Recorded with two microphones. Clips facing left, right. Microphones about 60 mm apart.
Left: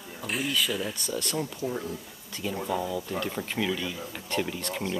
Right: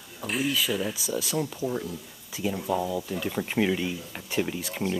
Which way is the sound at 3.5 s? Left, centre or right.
Right.